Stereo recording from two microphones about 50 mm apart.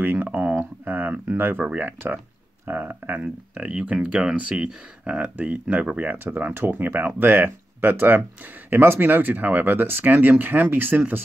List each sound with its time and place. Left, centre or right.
0.0 s a sound: right
0.3 s speech: right
3.5 s speech: right
6.1 s speech: right